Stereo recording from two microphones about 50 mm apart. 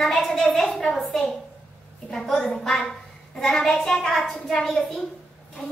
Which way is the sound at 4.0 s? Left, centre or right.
Centre.